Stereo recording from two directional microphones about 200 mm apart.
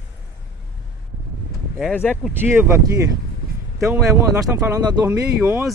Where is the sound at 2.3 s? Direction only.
10° right (ahead or behind).